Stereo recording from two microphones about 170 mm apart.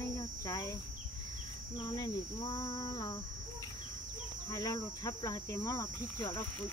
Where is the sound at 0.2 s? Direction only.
20° left (ahead or behind).